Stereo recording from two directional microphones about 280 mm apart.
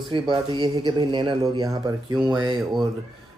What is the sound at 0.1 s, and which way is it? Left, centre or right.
Speech, centre.